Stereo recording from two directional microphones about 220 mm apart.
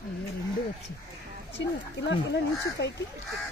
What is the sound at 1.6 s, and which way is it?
Speech, 55° left (ahead or behind).